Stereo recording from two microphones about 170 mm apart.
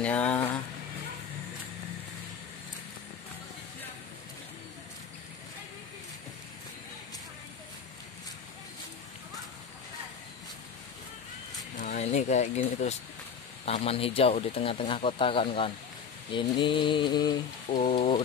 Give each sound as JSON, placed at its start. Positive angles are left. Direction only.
{"t": 0.0, "sound": "speech", "side_deg": 10}
{"t": 11.7, "sound": "a sound", "side_deg": 45}
{"t": 13.7, "sound": "speech", "side_deg": 35}
{"t": 16.3, "sound": "mantra", "side_deg": 30}